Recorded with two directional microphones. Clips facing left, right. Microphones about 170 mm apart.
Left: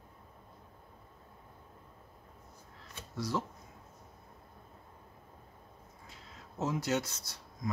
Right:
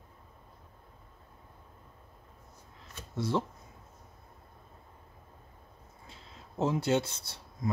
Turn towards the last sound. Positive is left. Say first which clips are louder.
# right 4 dB
turn(degrees=-30)  # may be behind; listen again after turning